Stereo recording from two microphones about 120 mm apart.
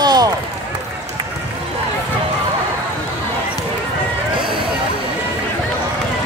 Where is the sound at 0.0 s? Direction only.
35° right (ahead or behind).